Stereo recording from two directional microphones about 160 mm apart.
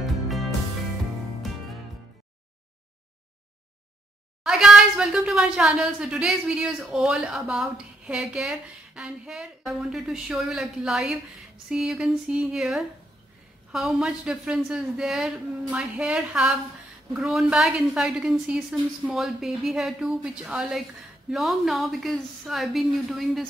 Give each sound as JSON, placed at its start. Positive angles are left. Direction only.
{"t": 0.0, "sound": "music", "side_deg": 0}
{"t": 4.4, "sound": "speech", "side_deg": -5}